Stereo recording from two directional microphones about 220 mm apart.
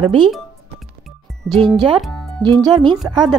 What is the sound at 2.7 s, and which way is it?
Speech, 20° right (ahead or behind).